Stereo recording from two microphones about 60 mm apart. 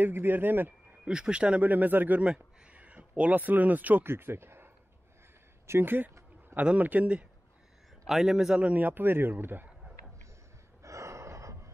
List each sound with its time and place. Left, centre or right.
0.0 s speech: right
1.0 s speech: centre
1.7 s a man's voice: right
2.2 s speech: centre
4.1 s speech: right
5.7 s speech: right
6.5 s a man's voice: right
8.1 s a man's voice: centre; by 9.7 s right
10.8 s gasp: right